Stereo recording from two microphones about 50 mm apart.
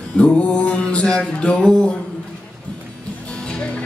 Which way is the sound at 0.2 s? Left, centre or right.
Left.